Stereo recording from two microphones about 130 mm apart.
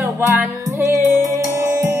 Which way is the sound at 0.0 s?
15° right (ahead or behind).